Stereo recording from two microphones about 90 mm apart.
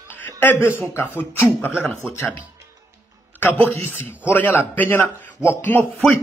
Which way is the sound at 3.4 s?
20° left (ahead or behind).